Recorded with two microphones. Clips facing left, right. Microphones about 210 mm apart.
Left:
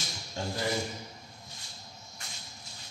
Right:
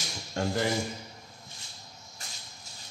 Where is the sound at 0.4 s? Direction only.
75° right (ahead or behind).